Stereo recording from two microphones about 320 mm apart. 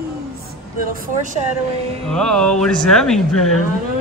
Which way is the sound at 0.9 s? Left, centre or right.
Right.